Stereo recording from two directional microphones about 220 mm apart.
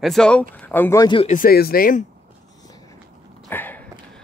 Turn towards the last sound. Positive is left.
turn(degrees=10)  # may be behind; listen again after turning